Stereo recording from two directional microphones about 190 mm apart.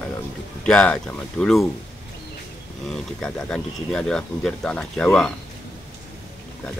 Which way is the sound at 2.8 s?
5° left (ahead or behind).